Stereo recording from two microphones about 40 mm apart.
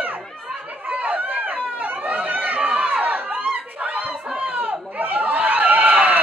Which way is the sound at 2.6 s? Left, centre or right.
Right.